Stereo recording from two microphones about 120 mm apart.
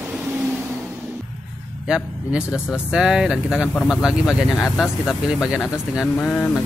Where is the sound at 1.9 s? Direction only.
5° right (ahead or behind).